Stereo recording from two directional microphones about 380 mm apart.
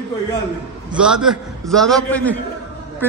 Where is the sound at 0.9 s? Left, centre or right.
Centre.